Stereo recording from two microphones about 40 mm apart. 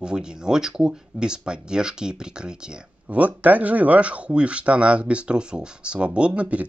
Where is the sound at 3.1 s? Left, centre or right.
Right.